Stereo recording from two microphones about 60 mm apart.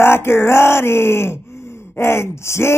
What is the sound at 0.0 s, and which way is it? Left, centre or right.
Groan, left.